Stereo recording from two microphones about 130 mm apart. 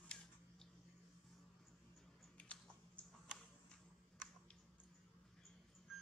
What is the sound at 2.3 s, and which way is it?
Chewing, 10° left (ahead or behind).